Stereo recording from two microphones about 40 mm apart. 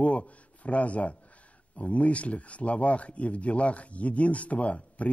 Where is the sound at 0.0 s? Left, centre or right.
Left.